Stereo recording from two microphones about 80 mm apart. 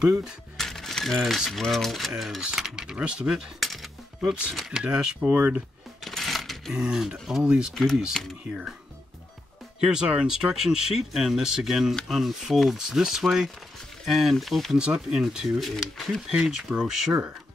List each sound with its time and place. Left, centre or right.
0.0 s speech: centre
0.6 s speech: centre
5.3 s speech: right
6.0 s coin: centre
6.7 s speech: centre
9.8 s speech: centre
14.8 s speech: centre